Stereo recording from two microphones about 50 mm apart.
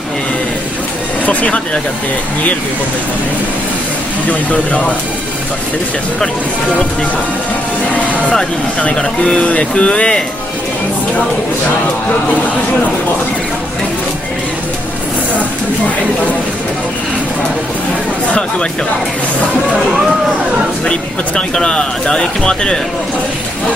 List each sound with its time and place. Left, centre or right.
1.2 s speech: left
4.3 s speech: left
8.9 s speech: centre
20.8 s speech: centre